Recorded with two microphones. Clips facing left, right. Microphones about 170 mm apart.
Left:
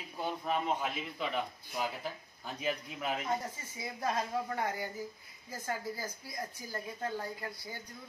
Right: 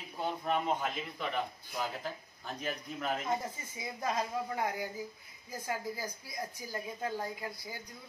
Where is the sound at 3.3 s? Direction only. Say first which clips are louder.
Right 1 dB; 15° right (ahead or behind).